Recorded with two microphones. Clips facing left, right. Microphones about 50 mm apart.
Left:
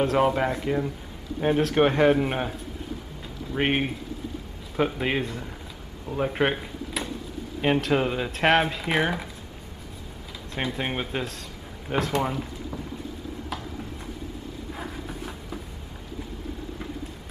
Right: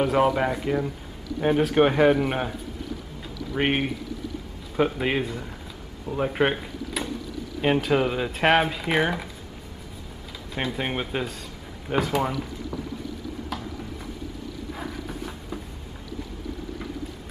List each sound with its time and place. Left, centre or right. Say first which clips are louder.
0.0 s speech: right 1 dB; centre
3.5 s speech: right 1 dB; centre
10.5 s speech: right 1 dB; centre
12.3 s boat: right 1 dB; left
14.8 s a sound: right 1 dB; centre